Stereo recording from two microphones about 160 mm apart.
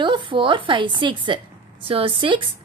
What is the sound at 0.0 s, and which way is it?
A woman's voice, 30° right (ahead or behind).